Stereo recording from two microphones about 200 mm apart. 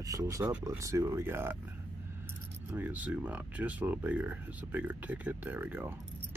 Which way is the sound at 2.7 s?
10° right (ahead or behind).